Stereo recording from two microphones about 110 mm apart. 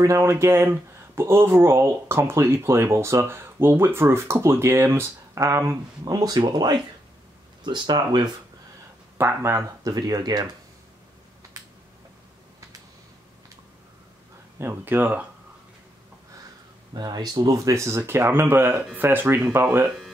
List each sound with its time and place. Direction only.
0.0 s speech: 25° right (ahead or behind)
9.2 s speech: 25° right (ahead or behind)
9.9 s speech: 40° right (ahead or behind)
14.6 s speech: 20° right (ahead or behind)
16.9 s speech: 35° right (ahead or behind); by 19.9 s 20° right (ahead or behind)